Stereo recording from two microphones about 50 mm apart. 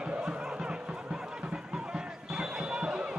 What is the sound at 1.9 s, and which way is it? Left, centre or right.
Basketball bounce, centre.